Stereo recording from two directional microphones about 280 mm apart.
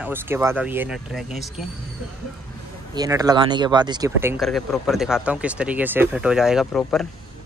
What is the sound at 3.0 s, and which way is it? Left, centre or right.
Speech, centre.